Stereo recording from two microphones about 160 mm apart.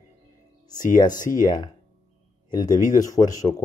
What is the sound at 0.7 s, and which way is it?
Speech, 25° left (ahead or behind).